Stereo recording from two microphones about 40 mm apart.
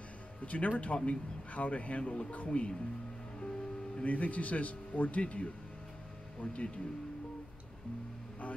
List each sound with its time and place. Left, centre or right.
0.4 s speech: left
3.3 s music: left
4.0 s speech: left